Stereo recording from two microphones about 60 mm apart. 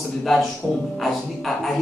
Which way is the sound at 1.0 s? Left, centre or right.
Centre.